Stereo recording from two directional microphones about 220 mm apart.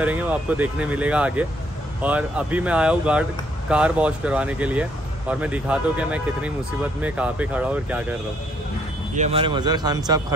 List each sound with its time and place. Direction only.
0.0 s speech: 5° right (ahead or behind)
9.1 s speech: 30° right (ahead or behind)